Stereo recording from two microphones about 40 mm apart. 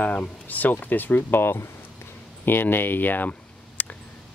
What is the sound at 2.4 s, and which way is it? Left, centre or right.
Speech, left.